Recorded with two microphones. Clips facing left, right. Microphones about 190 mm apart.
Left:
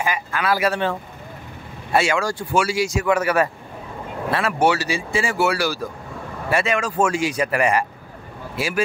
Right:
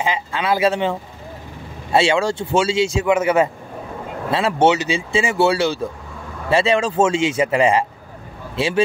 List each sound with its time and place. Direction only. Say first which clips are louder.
0.0 s speech: right 2 dB; 25° right (ahead or behind)